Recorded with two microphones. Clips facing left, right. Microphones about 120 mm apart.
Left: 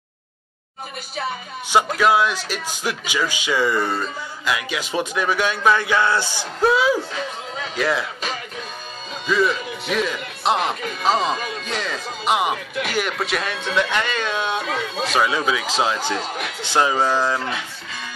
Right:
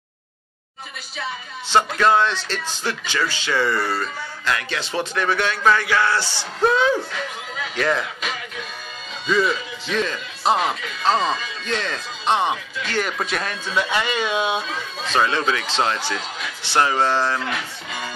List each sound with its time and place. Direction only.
2.0 s speech: 10° left (ahead or behind)
6.6 s speech: 5° left (ahead or behind)
8.2 s music: 35° left (ahead or behind)
9.3 s speech: centre (ahead or behind)
11.3 s music: 55° left (ahead or behind)
11.6 s speech: 5° left (ahead or behind)
12.8 s a man's voice: 60° left (ahead or behind)
13.2 s speech: centre (ahead or behind)
14.6 s speech: 70° left (ahead or behind)
15.1 s speech: 10° left (ahead or behind)
17.4 s speech: 25° left (ahead or behind)